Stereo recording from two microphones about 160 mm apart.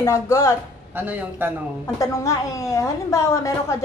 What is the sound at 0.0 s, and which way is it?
Speech, 20° left (ahead or behind).